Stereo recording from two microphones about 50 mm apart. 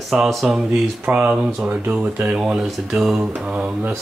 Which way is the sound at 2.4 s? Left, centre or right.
Centre.